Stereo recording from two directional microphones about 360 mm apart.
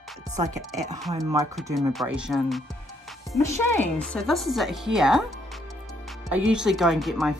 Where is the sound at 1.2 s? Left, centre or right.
Centre.